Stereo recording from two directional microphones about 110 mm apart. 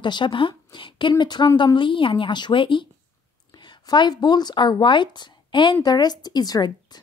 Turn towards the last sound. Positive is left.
turn(degrees=35)  # may be behind; listen again after turning